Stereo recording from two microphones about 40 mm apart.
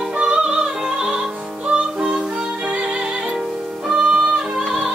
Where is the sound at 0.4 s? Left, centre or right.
Right.